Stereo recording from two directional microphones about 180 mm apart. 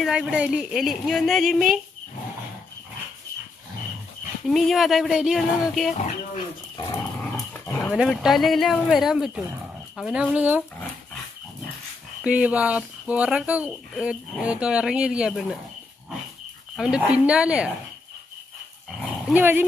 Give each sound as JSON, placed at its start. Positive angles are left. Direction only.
{"t": 0.0, "sound": "speech", "side_deg": -5}
{"t": 4.5, "sound": "speech", "side_deg": 0}
{"t": 6.9, "sound": "dog", "side_deg": 10}
{"t": 7.9, "sound": "speech", "side_deg": -5}
{"t": 12.2, "sound": "speech", "side_deg": -5}
{"t": 16.7, "sound": "speech", "side_deg": -5}
{"t": 19.3, "sound": "speech", "side_deg": -10}